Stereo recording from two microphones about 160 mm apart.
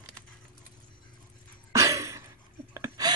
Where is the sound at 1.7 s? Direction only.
20° right (ahead or behind).